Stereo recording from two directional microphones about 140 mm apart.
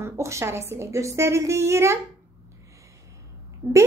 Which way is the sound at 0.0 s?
20° right (ahead or behind).